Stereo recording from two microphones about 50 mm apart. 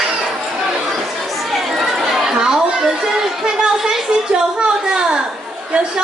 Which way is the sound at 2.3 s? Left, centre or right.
Centre.